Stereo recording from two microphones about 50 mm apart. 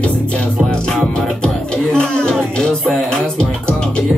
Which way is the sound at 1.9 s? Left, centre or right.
Centre.